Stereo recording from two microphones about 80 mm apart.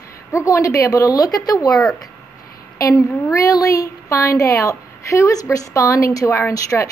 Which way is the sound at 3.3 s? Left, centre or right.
Left.